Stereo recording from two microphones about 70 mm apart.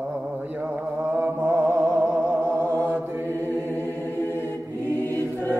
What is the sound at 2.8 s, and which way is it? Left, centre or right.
Mantra, right.